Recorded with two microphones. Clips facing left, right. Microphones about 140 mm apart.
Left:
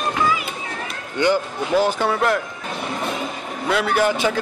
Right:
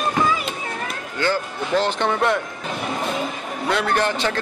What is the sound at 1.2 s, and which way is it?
Speech, 15° left (ahead or behind).